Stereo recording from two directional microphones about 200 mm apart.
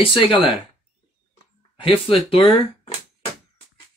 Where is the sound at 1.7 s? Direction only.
25° left (ahead or behind).